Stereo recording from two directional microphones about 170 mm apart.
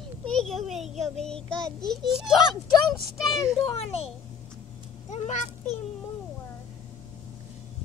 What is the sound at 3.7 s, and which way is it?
Speech, 35° left (ahead or behind).